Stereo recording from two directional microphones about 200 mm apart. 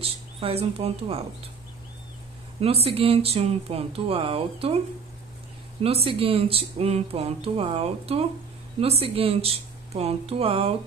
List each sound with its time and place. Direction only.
0.0 s speech: 30° right (ahead or behind)
2.6 s speech: 30° right (ahead or behind)
5.8 s speech: 30° right (ahead or behind)